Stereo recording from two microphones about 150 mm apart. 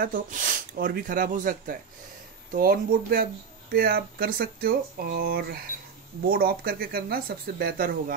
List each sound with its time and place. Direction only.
0.0 s speech: 65° right (ahead or behind)